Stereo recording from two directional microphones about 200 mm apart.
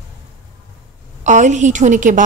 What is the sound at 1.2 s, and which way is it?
A woman's voice, 35° right (ahead or behind).